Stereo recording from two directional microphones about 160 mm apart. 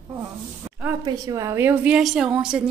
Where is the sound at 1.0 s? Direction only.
20° right (ahead or behind); by 2.7 s 5° right (ahead or behind).